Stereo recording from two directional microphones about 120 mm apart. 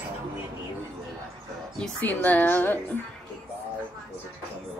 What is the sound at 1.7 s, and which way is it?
A woman's voice, 10° left (ahead or behind).